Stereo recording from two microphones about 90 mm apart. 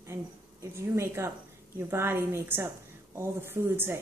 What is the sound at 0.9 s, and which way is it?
A woman's voice, 30° right (ahead or behind).